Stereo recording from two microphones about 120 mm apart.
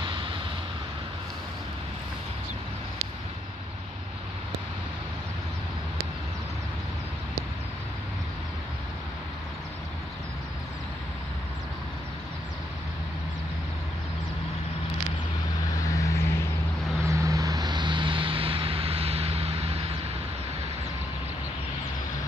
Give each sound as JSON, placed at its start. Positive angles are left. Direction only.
{"t": 0.0, "sound": "vehicle", "side_deg": -45}
{"t": 15.9, "sound": "vehicle", "side_deg": 30}
{"t": 17.0, "sound": "vehicle", "side_deg": -25}